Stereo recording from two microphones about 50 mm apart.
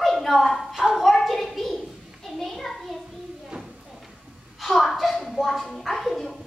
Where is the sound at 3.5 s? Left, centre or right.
Right.